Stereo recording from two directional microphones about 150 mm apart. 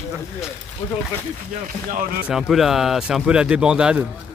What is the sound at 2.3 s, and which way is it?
Speech, centre (ahead or behind).